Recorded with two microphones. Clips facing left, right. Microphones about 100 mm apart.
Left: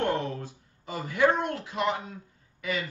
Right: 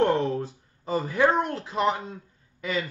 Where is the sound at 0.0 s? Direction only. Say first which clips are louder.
Right 6 dB; 30° right (ahead or behind).